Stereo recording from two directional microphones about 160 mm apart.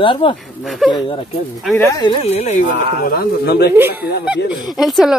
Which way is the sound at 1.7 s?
20° left (ahead or behind).